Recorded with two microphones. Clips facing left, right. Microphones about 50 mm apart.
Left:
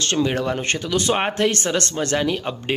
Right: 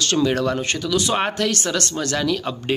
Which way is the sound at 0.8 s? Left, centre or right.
Left.